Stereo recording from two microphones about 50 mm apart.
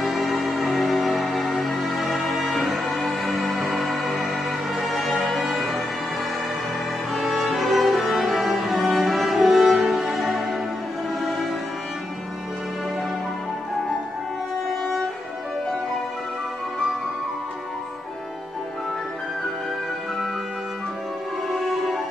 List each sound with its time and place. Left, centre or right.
0.0 s music: centre
7.1 s music: centre
21.5 s music: centre